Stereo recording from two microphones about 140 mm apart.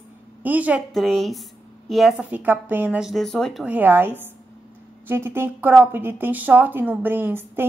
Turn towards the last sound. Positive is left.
turn(degrees=-15)  # may be behind; listen again after turning